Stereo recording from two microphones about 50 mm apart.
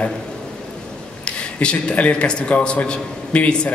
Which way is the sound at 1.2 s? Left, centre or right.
Left.